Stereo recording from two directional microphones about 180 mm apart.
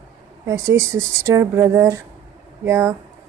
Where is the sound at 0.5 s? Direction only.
15° right (ahead or behind).